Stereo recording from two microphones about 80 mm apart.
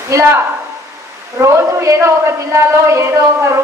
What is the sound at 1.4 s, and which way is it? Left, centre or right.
A woman's voice, right.